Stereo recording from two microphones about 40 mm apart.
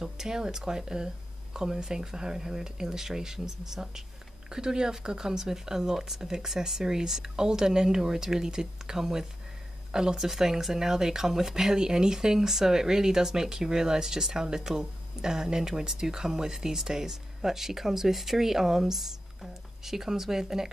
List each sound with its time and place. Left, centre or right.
0.0 s speech: centre